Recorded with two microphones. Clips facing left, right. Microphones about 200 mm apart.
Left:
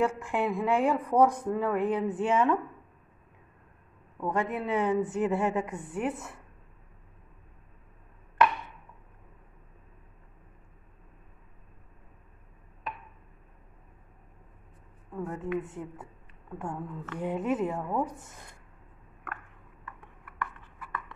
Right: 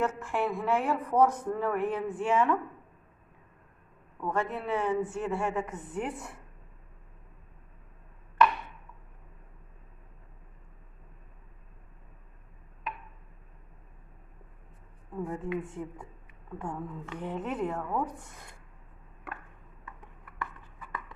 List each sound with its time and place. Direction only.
0.0 s speech: 15° left (ahead or behind)
4.2 s speech: 15° left (ahead or behind); by 6.4 s centre (ahead or behind)
15.1 s a woman's voice: centre (ahead or behind)